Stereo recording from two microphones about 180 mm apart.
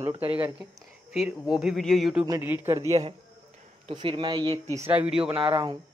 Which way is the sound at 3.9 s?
30° right (ahead or behind).